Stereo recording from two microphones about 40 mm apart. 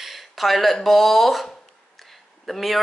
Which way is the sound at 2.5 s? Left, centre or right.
Centre.